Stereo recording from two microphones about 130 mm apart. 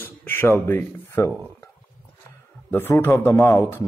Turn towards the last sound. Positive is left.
turn(degrees=20)  # may be behind; listen again after turning